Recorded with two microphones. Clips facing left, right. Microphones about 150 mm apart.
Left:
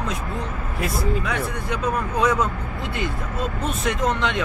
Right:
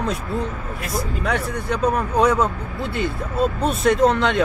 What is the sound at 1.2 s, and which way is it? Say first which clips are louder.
Speech: right 3 dB; 35° right (ahead or behind).